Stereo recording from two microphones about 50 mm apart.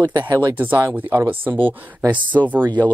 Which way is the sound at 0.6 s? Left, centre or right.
Right.